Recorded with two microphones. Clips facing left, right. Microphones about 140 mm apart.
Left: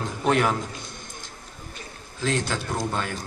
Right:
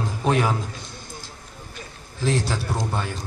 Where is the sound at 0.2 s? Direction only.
15° right (ahead or behind).